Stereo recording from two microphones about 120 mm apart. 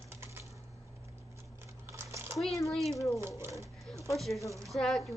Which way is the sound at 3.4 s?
25° right (ahead or behind).